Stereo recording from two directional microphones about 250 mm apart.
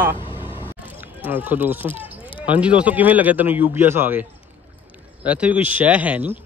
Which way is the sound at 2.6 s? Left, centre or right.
Centre.